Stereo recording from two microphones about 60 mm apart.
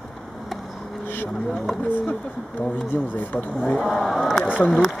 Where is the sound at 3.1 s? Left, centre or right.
Left.